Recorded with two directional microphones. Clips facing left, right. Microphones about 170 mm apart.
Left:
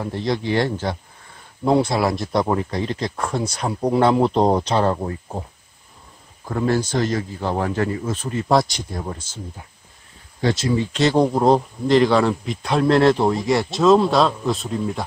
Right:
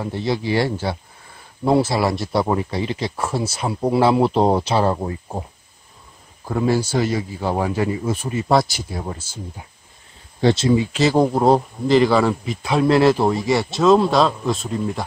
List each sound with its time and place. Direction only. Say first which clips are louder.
0.0 s a man's voice: even; 5° right (ahead or behind)
6.4 s speech: right 1 dB; 10° right (ahead or behind)
10.4 s speech: right 4 dB; 25° right (ahead or behind)
10.8 s a man's voice: right 1 dB; 5° right (ahead or behind)